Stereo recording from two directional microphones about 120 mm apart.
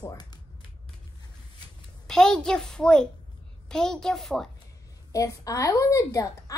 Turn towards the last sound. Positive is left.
turn(degrees=25)  # may be behind; listen again after turning